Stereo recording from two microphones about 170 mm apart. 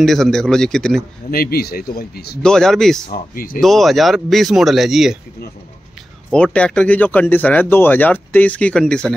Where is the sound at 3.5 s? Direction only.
Centre (ahead or behind).